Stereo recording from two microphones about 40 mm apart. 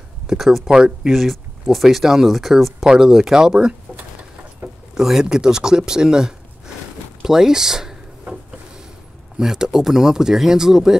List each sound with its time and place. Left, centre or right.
0.3 s speech: centre
4.9 s speech: centre
9.4 s speech: centre